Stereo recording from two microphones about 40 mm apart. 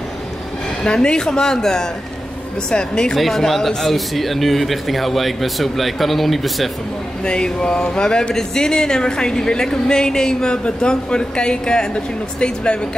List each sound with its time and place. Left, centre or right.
0.8 s speech: left
3.2 s speech: centre
7.2 s speech: left